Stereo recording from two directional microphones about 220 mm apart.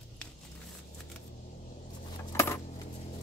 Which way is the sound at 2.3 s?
15° left (ahead or behind).